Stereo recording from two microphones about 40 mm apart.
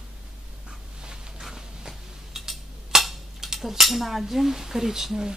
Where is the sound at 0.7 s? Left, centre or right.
Centre.